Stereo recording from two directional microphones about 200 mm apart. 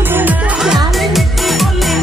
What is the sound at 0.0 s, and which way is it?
Music, 10° right (ahead or behind).